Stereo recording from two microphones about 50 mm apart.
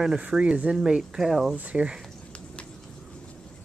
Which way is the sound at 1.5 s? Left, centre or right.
Right.